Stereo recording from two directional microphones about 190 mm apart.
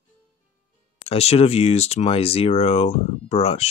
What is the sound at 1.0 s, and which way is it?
Speech, 35° left (ahead or behind).